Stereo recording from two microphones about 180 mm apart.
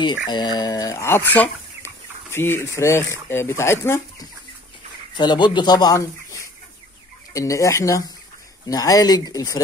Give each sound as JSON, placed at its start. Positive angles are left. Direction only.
{"t": 0.3, "sound": "speech", "side_deg": 25}